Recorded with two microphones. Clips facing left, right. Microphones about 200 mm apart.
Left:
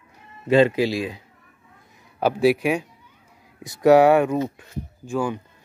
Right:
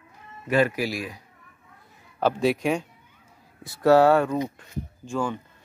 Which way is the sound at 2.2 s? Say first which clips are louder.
Left 4 dB; 10° left (ahead or behind).